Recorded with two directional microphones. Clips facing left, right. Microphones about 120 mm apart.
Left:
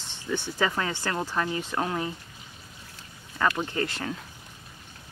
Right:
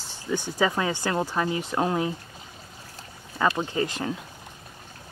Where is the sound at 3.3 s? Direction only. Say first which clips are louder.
Right 2 dB; 20° right (ahead or behind).